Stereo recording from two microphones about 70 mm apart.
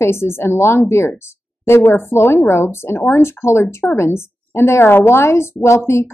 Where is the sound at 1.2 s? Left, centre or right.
Left.